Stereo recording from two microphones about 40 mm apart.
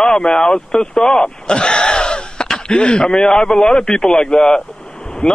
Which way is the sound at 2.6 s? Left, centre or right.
Centre.